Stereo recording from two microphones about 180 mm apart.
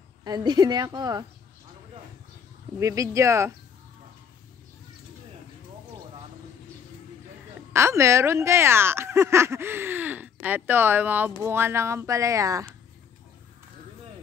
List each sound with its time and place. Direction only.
0.2 s a woman's voice: 20° right (ahead or behind)
2.8 s speech: 20° right (ahead or behind)
7.7 s speech: 15° right (ahead or behind)